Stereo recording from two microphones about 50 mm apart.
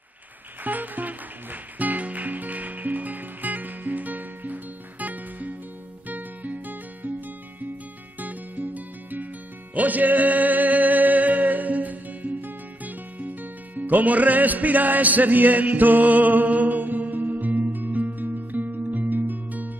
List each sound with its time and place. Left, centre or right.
0.7 s music: right
8.2 s music: right